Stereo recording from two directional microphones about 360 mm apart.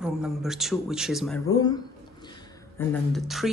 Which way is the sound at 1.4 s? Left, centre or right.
Centre.